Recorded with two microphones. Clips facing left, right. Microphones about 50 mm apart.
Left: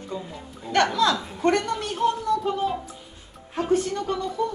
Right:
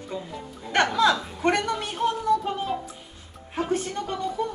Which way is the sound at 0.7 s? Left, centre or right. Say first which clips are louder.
Even; centre.